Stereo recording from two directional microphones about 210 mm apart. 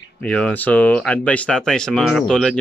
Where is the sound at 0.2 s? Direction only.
5° left (ahead or behind).